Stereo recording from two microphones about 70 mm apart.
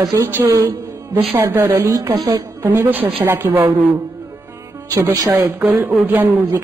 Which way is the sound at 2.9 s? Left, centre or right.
Right.